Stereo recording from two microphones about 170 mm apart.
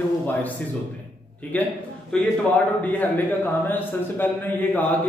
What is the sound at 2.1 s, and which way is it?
A man's voice, 10° left (ahead or behind).